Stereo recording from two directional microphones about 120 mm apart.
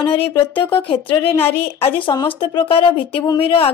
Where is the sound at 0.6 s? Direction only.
45° left (ahead or behind).